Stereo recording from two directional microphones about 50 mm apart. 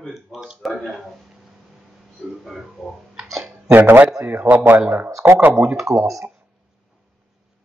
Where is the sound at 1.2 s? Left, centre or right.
Centre.